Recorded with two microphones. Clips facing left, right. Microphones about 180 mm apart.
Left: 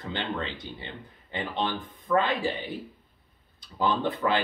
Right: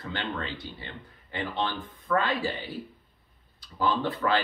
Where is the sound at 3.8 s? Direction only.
20° left (ahead or behind).